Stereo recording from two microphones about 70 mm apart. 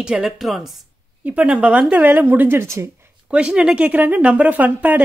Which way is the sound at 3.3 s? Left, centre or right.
Centre.